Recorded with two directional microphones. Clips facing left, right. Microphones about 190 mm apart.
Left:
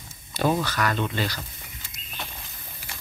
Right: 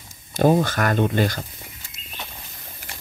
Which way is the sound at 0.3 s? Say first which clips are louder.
Right 6 dB; 45° right (ahead or behind).